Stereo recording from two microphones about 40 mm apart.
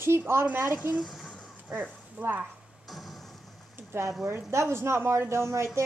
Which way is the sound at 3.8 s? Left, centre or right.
Right.